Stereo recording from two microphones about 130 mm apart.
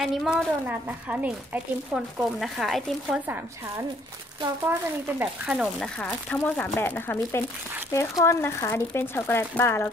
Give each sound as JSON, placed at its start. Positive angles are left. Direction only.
{"t": 0.0, "sound": "speech", "side_deg": 0}
{"t": 0.7, "sound": "speech", "side_deg": -15}
{"t": 2.0, "sound": "speech", "side_deg": 0}
{"t": 5.5, "sound": "speech", "side_deg": -5}
{"t": 5.9, "sound": "speech", "side_deg": 10}